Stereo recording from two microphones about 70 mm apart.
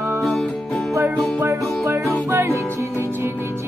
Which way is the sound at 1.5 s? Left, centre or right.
Right.